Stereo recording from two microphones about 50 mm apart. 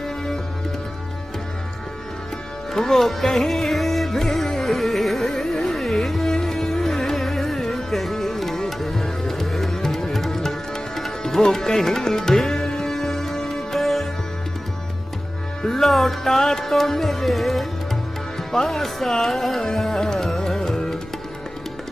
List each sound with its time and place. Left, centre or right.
2.7 s music: centre
15.6 s music: centre